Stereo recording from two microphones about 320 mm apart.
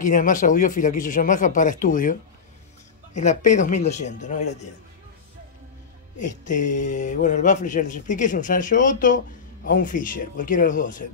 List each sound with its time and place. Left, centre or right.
0.0 s speech: left
6.1 s speech: left